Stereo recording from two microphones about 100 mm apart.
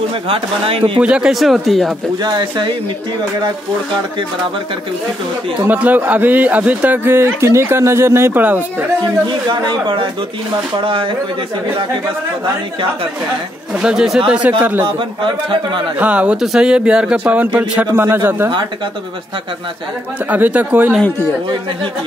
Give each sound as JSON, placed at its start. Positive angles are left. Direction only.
{"t": 0.3, "sound": "speech", "side_deg": -70}
{"t": 1.0, "sound": "speech", "side_deg": -10}
{"t": 2.2, "sound": "speech", "side_deg": -45}
{"t": 5.7, "sound": "a man's voice", "side_deg": -15}
{"t": 9.0, "sound": "a man's voice", "side_deg": -50}
{"t": 13.7, "sound": "speech", "side_deg": -5}
{"t": 14.6, "sound": "a man's voice", "side_deg": -20}
{"t": 14.9, "sound": "a man's voice", "side_deg": -55}
{"t": 16.0, "sound": "a man's voice", "side_deg": -15}
{"t": 20.2, "sound": "a man's voice", "side_deg": -15}